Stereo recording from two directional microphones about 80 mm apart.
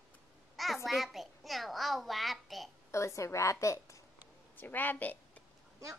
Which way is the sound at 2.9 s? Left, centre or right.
Left.